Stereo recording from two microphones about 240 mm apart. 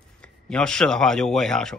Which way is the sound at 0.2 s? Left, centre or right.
Centre.